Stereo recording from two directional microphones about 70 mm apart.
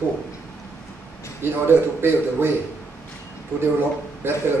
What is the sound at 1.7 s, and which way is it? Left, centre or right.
Speech, right.